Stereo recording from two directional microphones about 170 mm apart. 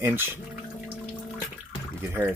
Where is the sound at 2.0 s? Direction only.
10° right (ahead or behind).